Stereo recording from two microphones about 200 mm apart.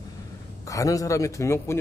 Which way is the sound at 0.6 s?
15° left (ahead or behind).